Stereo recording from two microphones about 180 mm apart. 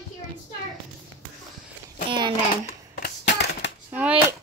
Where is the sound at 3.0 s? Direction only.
70° left (ahead or behind).